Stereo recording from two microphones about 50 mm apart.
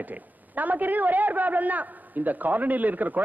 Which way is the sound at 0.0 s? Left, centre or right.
Right.